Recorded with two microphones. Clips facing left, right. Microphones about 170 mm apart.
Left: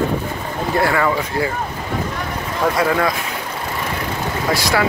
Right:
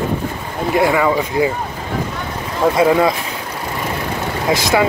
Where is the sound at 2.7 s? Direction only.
20° right (ahead or behind).